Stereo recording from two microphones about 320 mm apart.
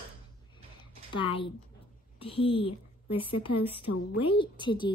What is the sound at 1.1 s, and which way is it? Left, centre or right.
A woman's voice, centre.